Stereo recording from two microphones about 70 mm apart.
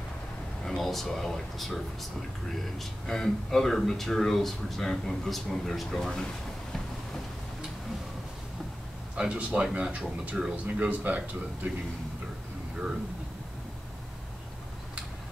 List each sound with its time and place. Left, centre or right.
0.7 s speech: centre
9.3 s speech: centre